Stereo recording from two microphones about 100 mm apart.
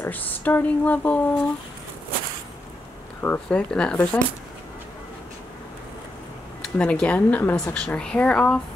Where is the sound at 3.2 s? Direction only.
15° left (ahead or behind).